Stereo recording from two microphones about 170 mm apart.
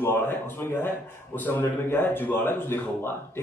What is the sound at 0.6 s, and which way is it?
A man's voice, 10° left (ahead or behind).